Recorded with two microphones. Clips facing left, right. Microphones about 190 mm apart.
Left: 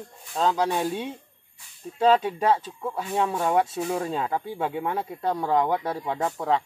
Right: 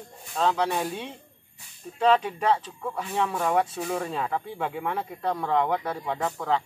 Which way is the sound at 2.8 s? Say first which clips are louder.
Left 2 dB; 25° left (ahead or behind).